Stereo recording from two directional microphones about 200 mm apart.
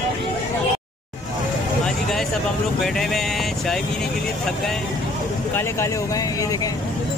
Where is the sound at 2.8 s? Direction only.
Centre (ahead or behind).